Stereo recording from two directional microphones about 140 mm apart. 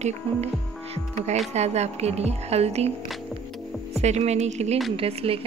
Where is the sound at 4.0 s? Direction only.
50° right (ahead or behind).